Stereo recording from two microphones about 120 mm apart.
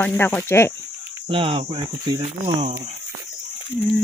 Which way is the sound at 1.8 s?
40° right (ahead or behind).